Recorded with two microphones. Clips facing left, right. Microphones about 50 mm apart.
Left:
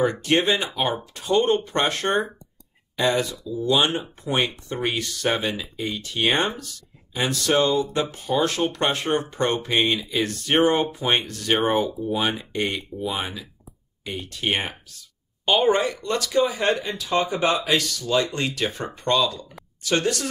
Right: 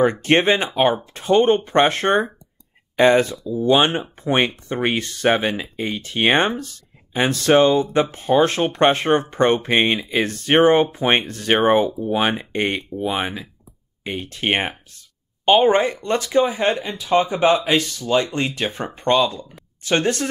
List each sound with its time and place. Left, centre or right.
0.0 s speech: right